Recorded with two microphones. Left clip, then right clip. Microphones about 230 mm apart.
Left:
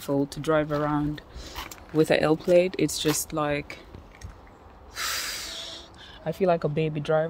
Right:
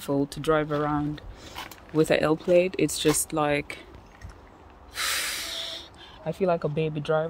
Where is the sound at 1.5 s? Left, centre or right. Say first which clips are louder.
Left 1 dB; centre.